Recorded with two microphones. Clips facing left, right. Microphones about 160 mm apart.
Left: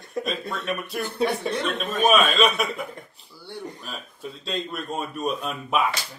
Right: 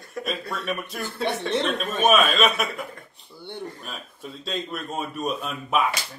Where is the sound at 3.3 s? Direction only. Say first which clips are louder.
Right 1 dB; 20° right (ahead or behind).